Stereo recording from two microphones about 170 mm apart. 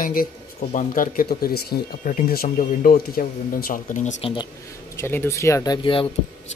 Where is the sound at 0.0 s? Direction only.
55° left (ahead or behind).